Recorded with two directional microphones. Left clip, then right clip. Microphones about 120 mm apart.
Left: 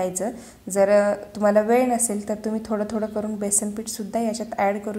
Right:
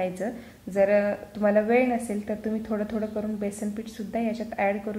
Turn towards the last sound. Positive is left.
turn(degrees=15)  # may be behind; listen again after turning